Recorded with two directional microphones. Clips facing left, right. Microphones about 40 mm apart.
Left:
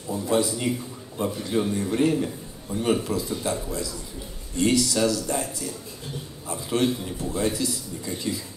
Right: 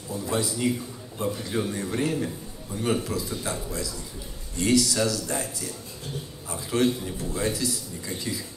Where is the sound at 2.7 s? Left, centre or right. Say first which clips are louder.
Left 3 dB; left.